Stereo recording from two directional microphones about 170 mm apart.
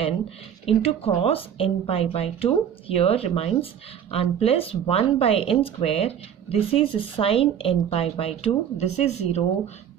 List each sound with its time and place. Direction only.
0.7 s speech: 35° left (ahead or behind)